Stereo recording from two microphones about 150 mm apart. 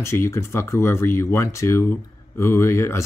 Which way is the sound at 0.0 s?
15° left (ahead or behind).